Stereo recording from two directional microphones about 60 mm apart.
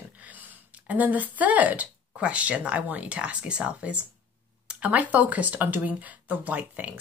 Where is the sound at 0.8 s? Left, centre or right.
Right.